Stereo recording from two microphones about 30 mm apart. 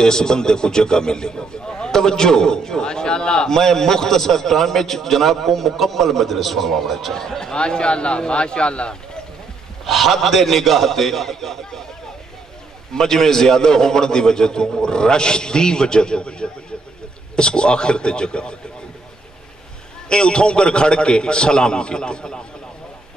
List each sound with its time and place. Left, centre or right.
0.0 s a man's voice: left; by 7.2 s centre
7.2 s speech: centre
7.5 s a man's voice: left
9.8 s a man's voice: centre
12.9 s a man's voice: centre; by 18.6 s left
20.1 s a man's voice: left